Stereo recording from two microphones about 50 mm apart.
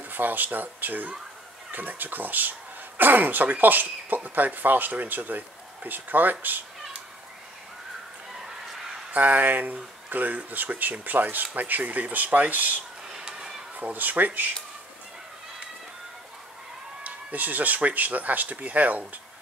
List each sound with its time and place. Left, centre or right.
0.1 s speech: right
8.5 s a sound: centre
9.1 s speech: right
13.1 s a sound: centre
13.7 s speech: right
17.0 s speech: right